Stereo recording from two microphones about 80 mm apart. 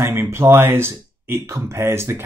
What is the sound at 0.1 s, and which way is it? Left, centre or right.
Speech, right.